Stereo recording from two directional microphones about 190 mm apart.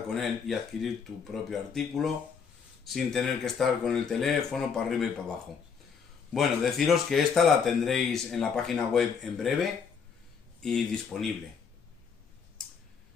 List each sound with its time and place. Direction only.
0.1 s speech: centre (ahead or behind)
6.3 s speech: centre (ahead or behind)